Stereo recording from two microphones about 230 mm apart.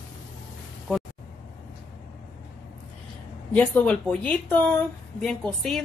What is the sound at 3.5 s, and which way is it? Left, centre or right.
A woman's voice, centre.